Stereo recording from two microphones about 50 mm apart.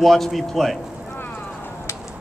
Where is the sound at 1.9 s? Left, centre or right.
Left.